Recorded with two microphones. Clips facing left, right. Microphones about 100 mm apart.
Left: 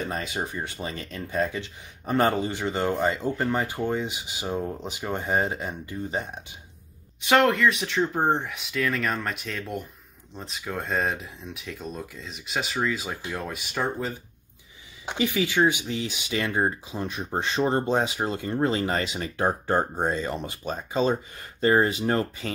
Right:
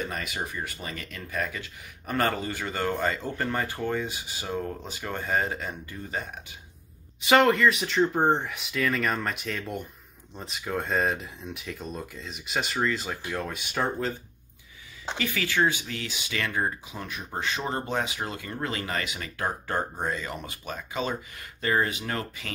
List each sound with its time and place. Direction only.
0.0 s speech: 30° left (ahead or behind)
7.2 s speech: centre (ahead or behind)
15.0 s speech: 15° left (ahead or behind)